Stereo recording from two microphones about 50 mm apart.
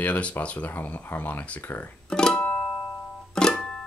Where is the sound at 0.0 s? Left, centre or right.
Left.